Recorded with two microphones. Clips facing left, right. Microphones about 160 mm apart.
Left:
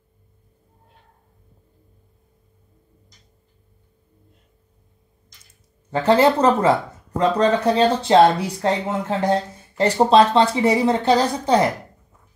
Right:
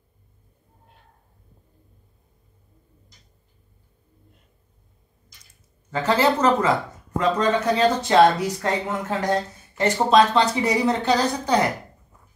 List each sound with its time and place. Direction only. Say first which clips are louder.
5.5 s speech: left 4 dB; 35° left (ahead or behind)